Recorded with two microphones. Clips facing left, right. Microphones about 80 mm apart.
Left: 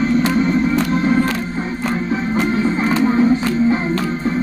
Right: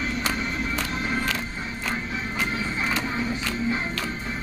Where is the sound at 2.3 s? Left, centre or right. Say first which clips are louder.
Left 11 dB; left.